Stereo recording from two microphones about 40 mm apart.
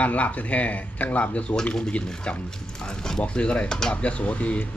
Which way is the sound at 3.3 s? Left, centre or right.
Left.